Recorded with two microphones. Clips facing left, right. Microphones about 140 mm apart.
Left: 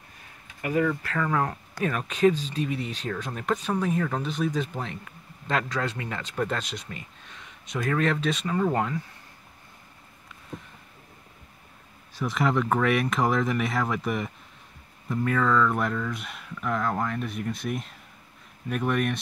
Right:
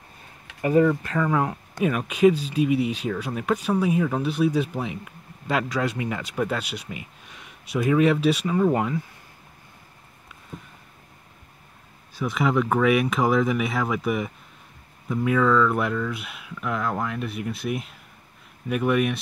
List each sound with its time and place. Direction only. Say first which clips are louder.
0.6 s speech: right 6 dB; 30° right (ahead or behind)
1.0 s speech: right 3 dB; 15° right (ahead or behind)
12.2 s speech: right 2 dB; centre (ahead or behind)